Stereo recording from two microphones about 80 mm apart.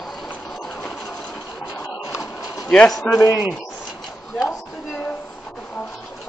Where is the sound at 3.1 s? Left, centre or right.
Left.